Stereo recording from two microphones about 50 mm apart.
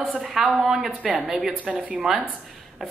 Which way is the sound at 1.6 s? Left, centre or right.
Right.